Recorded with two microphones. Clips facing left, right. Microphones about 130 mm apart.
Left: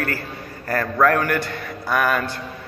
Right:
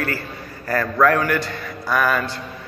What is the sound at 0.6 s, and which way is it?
A man's voice, 50° left (ahead or behind).